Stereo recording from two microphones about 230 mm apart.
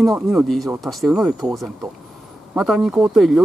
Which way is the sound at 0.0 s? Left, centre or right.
Centre.